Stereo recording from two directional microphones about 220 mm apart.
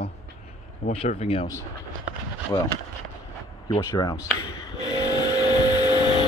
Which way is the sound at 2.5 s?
15° left (ahead or behind).